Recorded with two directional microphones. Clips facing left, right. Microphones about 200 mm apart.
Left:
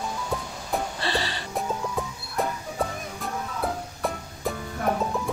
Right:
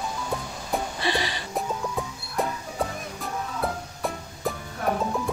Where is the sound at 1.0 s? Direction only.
15° right (ahead or behind).